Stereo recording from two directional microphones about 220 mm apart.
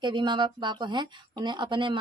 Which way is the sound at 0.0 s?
20° right (ahead or behind).